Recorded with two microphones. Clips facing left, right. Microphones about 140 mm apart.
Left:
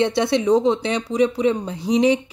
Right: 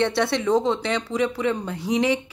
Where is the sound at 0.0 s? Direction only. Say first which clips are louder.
Left 3 dB; 15° left (ahead or behind).